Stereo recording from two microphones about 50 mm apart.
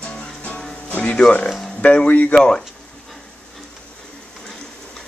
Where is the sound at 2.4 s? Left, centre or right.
Centre.